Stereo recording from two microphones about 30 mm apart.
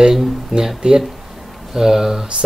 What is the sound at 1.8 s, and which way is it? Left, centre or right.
Speech, centre.